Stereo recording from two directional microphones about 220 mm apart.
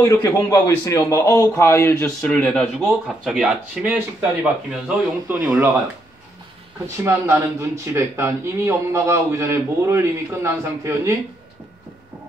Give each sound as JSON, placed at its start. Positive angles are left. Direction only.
{"t": 0.2, "sound": "a man's voice", "side_deg": 15}
{"t": 7.0, "sound": "speech", "side_deg": -10}